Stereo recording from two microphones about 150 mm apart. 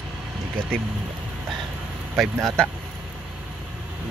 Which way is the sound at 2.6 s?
5° left (ahead or behind).